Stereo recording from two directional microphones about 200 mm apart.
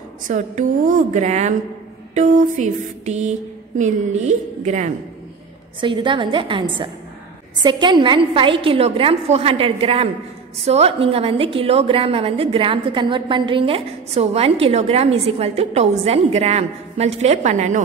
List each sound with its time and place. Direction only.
0.3 s a sound: 40° right (ahead or behind)
5.8 s a woman's voice: 25° right (ahead or behind)
7.6 s a woman's voice: 25° right (ahead or behind)